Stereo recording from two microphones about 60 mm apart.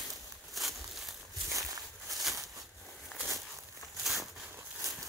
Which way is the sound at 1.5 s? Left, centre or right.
Right.